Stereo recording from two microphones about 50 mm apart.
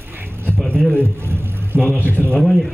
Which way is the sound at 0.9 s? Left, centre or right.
Right.